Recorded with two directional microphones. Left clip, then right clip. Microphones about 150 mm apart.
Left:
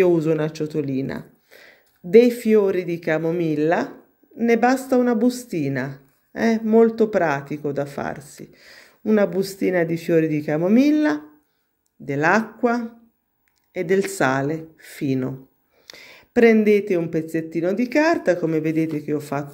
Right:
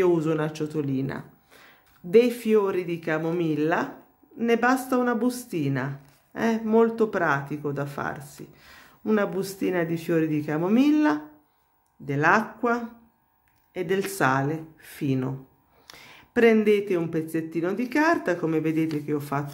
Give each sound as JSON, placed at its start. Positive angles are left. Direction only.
{"t": 0.0, "sound": "speech", "side_deg": 20}
{"t": 15.9, "sound": "a sound", "side_deg": 20}
{"t": 16.6, "sound": "speech", "side_deg": 20}